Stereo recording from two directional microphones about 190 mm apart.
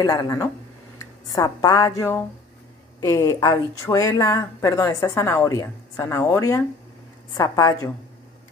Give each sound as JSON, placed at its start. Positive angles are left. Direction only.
{"t": 0.0, "sound": "speech", "side_deg": 20}